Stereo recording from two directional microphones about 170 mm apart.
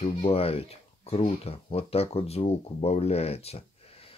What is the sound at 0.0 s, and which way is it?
Speech, 35° left (ahead or behind).